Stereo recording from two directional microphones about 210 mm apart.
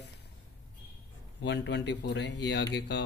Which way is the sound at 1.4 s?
55° left (ahead or behind).